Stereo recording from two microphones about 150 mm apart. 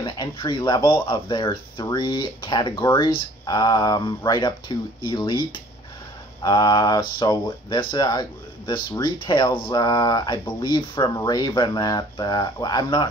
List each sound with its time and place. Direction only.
0.0 s speech: 30° left (ahead or behind)